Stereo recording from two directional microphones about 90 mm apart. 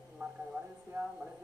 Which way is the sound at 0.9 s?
30° right (ahead or behind).